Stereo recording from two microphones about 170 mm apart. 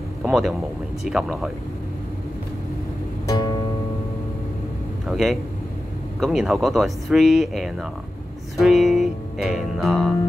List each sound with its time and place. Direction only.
0.2 s speech: centre (ahead or behind)
3.3 s music: 25° left (ahead or behind)
5.1 s a man's voice: centre (ahead or behind)